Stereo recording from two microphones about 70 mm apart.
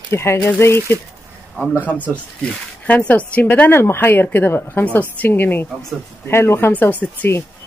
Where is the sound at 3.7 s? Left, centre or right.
Left.